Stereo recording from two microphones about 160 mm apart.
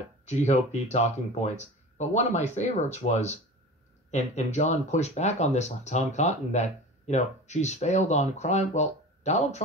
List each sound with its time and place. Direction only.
0.2 s speech: 45° left (ahead or behind)